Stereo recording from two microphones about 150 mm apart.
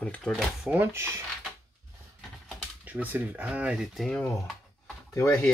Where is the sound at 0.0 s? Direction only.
Centre (ahead or behind).